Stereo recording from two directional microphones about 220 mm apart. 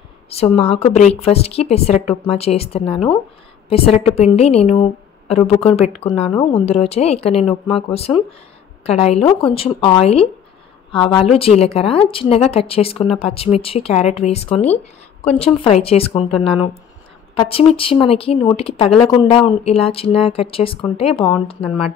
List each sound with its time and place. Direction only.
0.3 s a woman's voice: 30° left (ahead or behind)